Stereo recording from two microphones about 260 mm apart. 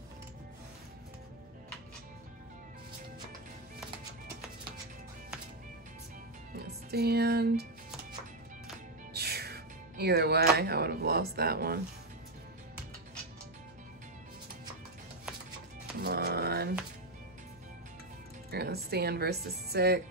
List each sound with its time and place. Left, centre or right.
6.5 s music: right
9.1 s speech: right
16.0 s music: right
18.5 s speech: right